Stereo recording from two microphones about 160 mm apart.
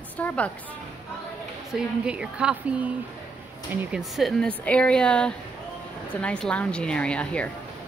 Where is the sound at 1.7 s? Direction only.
5° right (ahead or behind).